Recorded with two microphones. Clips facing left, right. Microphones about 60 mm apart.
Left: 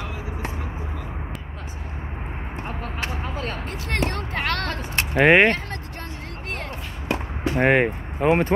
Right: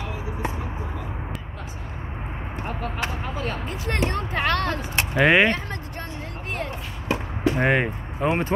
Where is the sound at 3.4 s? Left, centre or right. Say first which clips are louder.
Right 1 dB; left.